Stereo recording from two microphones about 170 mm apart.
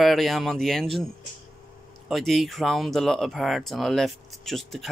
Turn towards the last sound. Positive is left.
turn(degrees=0)  # may be behind; listen again after turning